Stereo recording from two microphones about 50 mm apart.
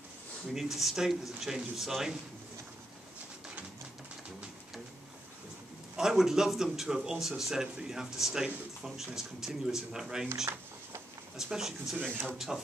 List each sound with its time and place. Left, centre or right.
0.5 s speech: centre
5.9 s speech: centre
11.3 s speech: centre
12.0 s speech: right